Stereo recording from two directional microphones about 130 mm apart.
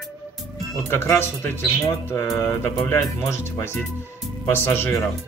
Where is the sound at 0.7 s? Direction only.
20° left (ahead or behind).